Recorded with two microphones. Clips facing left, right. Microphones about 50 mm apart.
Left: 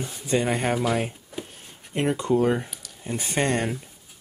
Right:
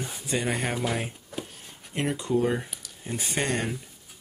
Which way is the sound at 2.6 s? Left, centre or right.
Centre.